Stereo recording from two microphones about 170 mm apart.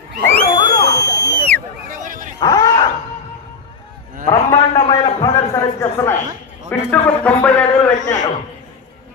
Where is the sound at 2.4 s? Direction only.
20° left (ahead or behind).